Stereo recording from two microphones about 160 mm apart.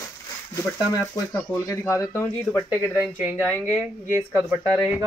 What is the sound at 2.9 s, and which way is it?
Speech, 10° right (ahead or behind).